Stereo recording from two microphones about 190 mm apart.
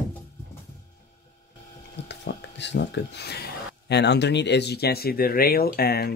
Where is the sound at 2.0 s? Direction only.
65° left (ahead or behind).